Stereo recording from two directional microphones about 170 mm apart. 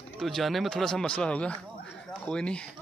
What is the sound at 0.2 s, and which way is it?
Speech, centre (ahead or behind).